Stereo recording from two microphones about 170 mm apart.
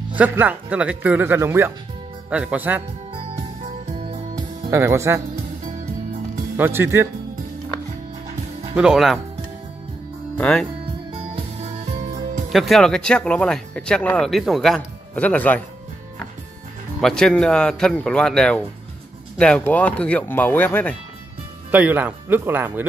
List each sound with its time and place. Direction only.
0.1 s speech: 10° right (ahead or behind)
3.8 s music: 35° right (ahead or behind)
4.6 s speech: 15° right (ahead or behind)
6.5 s speech: 15° right (ahead or behind)
8.7 s speech: centre (ahead or behind)
10.3 s speech: 5° left (ahead or behind)
11.3 s music: 45° right (ahead or behind)
12.5 s speech: centre (ahead or behind)
17.0 s speech: 5° left (ahead or behind)
21.6 s speech: 10° right (ahead or behind)